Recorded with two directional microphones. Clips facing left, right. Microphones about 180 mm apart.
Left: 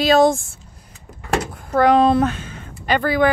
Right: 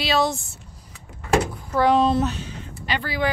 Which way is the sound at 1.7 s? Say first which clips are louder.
Left 5 dB; 55° left (ahead or behind).